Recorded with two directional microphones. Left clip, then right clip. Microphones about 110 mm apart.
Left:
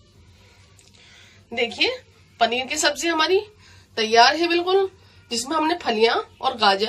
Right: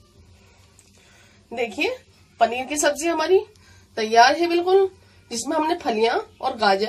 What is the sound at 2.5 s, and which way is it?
Speech, 35° right (ahead or behind).